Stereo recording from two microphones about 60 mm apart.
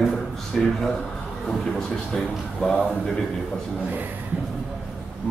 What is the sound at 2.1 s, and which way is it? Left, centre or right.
A man's voice, centre.